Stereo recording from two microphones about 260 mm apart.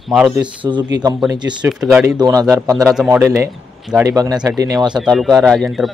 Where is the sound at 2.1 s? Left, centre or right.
Centre.